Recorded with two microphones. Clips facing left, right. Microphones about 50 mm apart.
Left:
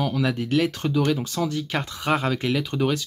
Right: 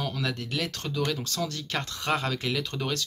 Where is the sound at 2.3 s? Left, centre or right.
Centre.